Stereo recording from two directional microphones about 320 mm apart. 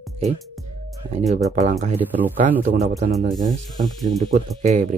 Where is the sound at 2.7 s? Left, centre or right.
Right.